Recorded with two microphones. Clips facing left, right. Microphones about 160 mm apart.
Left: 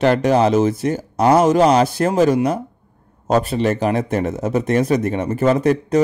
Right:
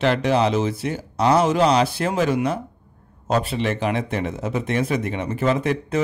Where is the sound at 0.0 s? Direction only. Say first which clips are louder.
Left 4 dB; 45° left (ahead or behind).